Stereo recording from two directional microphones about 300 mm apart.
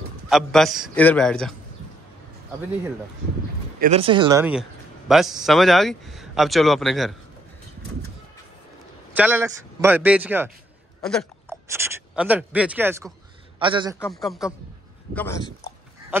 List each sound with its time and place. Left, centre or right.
0.3 s speech: centre
3.8 s speech: centre
9.1 s a man's voice: centre
11.0 s hiccup: centre
11.7 s a man's voice: centre
13.9 s speech: centre